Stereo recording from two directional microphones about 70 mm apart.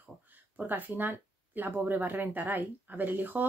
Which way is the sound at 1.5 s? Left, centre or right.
Right.